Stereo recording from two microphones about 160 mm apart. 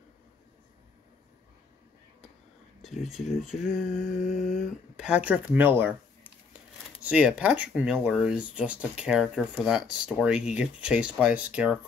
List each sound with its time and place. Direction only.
3.0 s speech: centre (ahead or behind)
7.0 s speech: 5° right (ahead or behind)